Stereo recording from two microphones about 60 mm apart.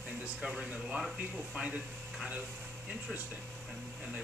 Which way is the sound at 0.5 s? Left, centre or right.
Right.